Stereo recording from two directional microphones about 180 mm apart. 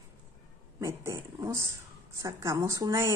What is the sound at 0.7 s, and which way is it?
Speech, 15° right (ahead or behind).